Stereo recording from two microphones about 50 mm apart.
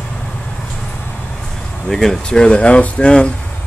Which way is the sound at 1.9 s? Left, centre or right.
Centre.